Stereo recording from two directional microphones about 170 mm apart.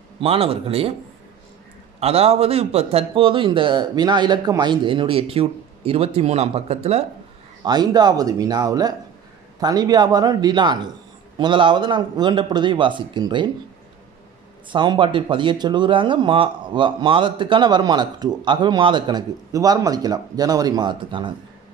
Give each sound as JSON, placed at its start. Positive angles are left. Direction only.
{"t": 0.2, "sound": "a man's voice", "side_deg": -35}
{"t": 2.0, "sound": "a man's voice", "side_deg": -35}
{"t": 7.6, "sound": "speech", "side_deg": -25}
{"t": 14.7, "sound": "speech", "side_deg": -25}